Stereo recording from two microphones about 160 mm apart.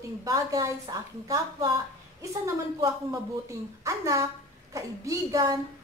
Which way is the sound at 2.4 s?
20° right (ahead or behind).